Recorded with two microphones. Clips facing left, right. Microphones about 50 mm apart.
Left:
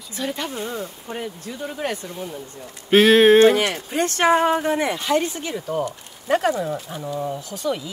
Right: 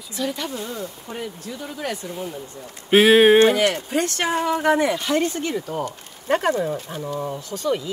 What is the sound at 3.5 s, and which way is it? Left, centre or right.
Speech, left.